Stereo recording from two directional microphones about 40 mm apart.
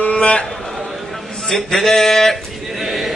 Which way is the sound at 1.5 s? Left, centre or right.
Centre.